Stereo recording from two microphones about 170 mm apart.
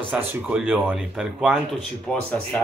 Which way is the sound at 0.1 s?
10° right (ahead or behind).